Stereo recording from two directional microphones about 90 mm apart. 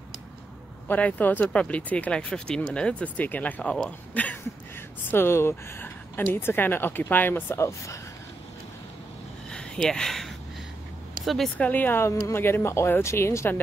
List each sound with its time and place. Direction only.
0.8 s speech: 15° left (ahead or behind)
5.1 s a woman's voice: 30° left (ahead or behind)
9.5 s a sound: 10° left (ahead or behind)
11.2 s speech: centre (ahead or behind)
11.5 s a woman's voice: 20° left (ahead or behind)